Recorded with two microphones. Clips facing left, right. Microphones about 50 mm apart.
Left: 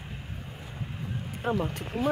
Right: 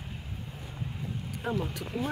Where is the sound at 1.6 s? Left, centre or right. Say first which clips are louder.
Left 4 dB; left.